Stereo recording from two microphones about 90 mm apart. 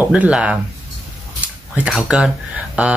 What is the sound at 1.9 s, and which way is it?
Speech, 10° right (ahead or behind).